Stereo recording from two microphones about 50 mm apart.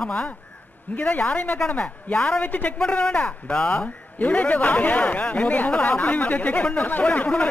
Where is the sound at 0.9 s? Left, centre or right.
Left.